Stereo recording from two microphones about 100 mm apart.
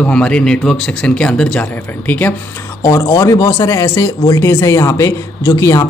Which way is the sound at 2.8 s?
35° left (ahead or behind).